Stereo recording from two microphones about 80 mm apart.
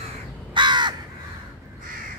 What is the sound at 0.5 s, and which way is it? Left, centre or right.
Crow, right.